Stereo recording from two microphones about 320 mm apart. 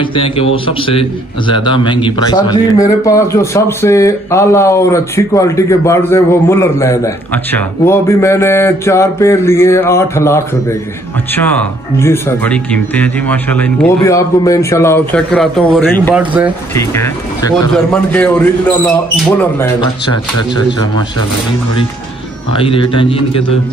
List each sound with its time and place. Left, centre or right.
0.0 s a man's voice: centre
12.0 s a man's voice: centre
16.7 s a man's voice: centre
22.5 s a man's voice: centre